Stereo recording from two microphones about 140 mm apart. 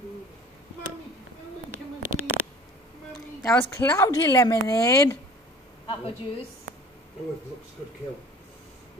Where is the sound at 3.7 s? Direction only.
20° left (ahead or behind).